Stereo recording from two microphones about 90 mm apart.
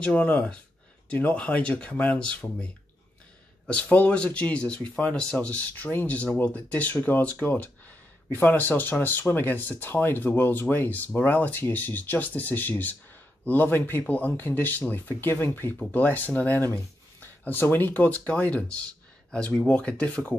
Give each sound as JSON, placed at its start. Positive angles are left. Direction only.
{"t": 0.0, "sound": "speech", "side_deg": 15}